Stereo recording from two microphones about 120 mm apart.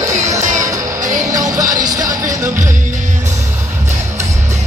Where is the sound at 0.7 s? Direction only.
25° right (ahead or behind).